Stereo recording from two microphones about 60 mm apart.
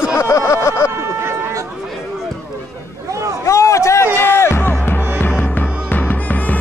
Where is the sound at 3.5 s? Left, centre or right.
Left.